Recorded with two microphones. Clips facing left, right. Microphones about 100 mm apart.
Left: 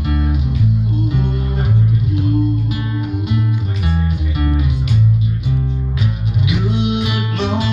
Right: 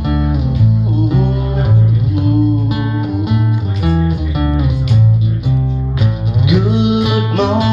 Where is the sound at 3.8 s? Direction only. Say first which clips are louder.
Right 8 dB; 40° right (ahead or behind).